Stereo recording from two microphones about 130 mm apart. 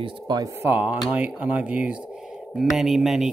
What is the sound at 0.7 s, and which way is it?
Speech, 15° right (ahead or behind).